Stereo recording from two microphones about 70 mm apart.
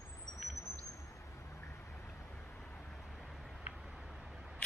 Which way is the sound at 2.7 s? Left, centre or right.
Centre.